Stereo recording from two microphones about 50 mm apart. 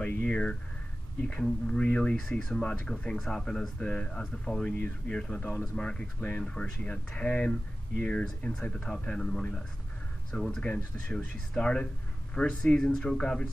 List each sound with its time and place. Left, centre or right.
0.0 s speech: left
1.7 s speech: centre
4.6 s speech: left
10.6 s speech: left
12.9 s speech: centre
13.2 s speech: centre